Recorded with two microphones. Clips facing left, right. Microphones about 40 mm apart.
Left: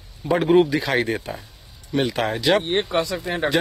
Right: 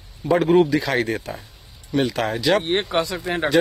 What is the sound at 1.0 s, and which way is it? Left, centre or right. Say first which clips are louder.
Speech: even; centre.